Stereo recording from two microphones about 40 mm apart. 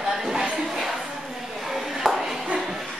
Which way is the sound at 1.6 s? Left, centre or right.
Centre.